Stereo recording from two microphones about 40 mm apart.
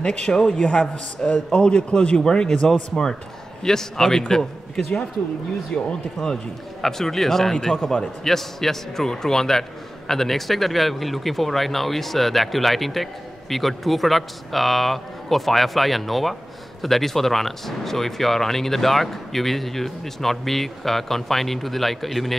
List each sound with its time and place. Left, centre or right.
0.0 s a man's voice: centre
0.7 s a man's voice: left
5.7 s a man's voice: left
6.2 s a man's voice: centre